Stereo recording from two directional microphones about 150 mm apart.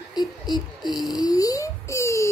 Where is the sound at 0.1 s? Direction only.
30° left (ahead or behind).